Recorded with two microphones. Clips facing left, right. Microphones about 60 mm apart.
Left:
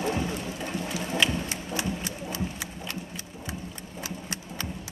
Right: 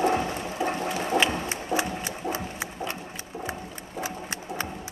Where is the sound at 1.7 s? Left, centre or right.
Right.